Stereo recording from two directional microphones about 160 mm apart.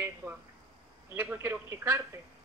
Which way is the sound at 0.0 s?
15° right (ahead or behind).